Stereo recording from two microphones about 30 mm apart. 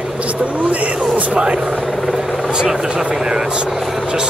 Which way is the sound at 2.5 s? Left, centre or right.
Right.